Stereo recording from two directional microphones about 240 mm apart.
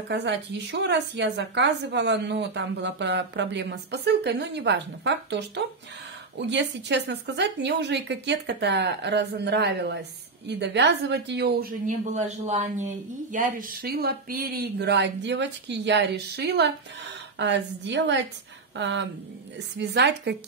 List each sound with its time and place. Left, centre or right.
0.1 s speech: right